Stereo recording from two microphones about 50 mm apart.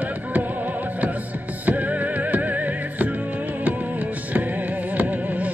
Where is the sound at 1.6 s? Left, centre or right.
Right.